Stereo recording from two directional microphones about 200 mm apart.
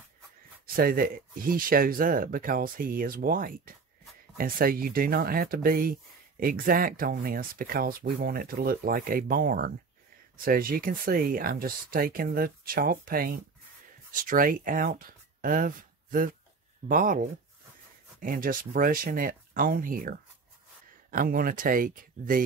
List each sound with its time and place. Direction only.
0.7 s speech: 45° right (ahead or behind)